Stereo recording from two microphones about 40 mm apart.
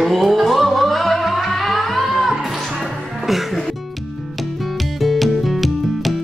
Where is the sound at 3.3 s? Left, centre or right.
Centre.